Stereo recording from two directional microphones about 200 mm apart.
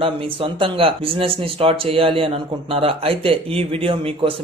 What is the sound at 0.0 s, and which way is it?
Speech, 25° right (ahead or behind).